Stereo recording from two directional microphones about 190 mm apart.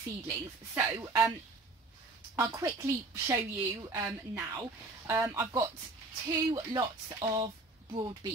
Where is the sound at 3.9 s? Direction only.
15° right (ahead or behind).